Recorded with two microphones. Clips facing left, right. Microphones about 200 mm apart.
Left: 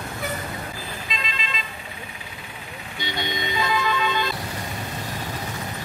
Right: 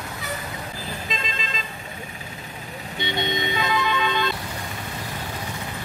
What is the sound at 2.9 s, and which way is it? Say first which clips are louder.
Vehicle: right 3 dB; 20° right (ahead or behind).